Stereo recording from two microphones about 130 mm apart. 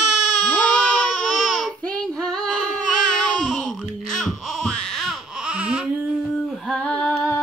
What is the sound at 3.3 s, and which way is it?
Baby cry, centre (ahead or behind).